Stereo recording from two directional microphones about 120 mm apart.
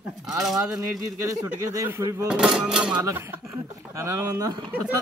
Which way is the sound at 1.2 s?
25° right (ahead or behind).